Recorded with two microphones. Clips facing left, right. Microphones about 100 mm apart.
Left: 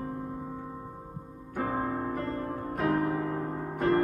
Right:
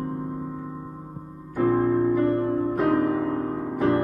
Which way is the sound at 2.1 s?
60° right (ahead or behind).